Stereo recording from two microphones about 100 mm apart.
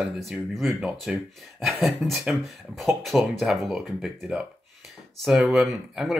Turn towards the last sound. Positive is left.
turn(degrees=0)  # may be behind; listen again after turning